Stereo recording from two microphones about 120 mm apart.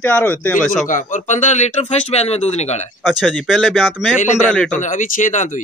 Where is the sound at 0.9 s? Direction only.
90° left; by 2.8 s 65° left (ahead or behind).